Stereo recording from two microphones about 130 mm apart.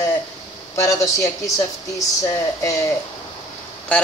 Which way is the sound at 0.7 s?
25° left (ahead or behind).